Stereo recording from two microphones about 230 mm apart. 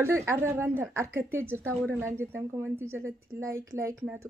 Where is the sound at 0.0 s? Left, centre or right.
Centre.